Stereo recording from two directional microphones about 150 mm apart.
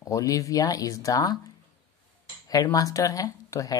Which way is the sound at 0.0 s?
20° left (ahead or behind).